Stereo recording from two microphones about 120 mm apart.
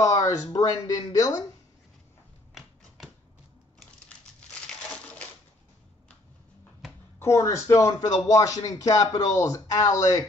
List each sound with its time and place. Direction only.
0.0 s speech: 30° left (ahead or behind)
7.2 s speech: 25° left (ahead or behind)